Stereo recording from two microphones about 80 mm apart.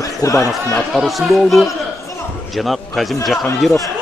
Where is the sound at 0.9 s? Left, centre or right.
Centre.